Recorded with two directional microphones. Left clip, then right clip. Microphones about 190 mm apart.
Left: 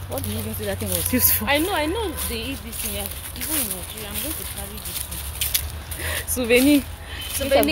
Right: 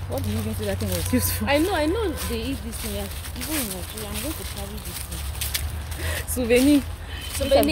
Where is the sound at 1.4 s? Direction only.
20° right (ahead or behind).